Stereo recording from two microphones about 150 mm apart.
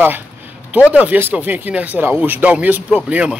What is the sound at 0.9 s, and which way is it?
Speech, 10° right (ahead or behind).